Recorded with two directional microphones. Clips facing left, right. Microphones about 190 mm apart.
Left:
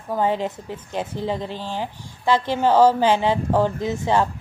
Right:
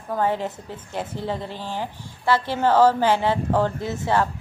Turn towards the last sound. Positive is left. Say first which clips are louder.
# left 2 dB
turn(degrees=15)  # may be behind; listen again after turning